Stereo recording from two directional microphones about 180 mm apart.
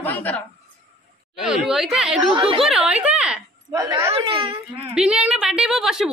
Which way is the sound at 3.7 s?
20° right (ahead or behind).